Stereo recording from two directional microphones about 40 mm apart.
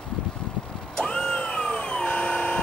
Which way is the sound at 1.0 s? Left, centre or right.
Centre.